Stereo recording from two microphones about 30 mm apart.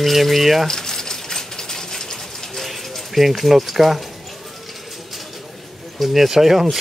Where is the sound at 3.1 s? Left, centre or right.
Centre.